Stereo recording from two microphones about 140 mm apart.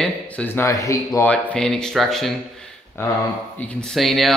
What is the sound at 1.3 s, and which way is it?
Speech, 5° left (ahead or behind).